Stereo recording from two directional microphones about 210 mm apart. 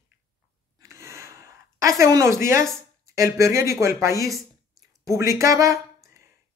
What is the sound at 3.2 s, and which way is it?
Speech, 15° right (ahead or behind).